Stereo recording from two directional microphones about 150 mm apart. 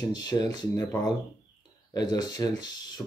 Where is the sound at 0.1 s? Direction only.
25° left (ahead or behind).